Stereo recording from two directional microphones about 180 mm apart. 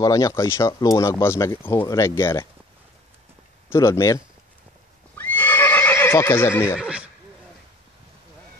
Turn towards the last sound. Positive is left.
turn(degrees=-5)  # may be behind; listen again after turning